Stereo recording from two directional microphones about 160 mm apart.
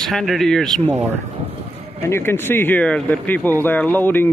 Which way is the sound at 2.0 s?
15° left (ahead or behind).